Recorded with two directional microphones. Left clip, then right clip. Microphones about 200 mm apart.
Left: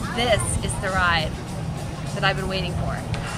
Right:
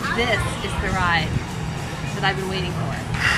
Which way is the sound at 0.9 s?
25° left (ahead or behind).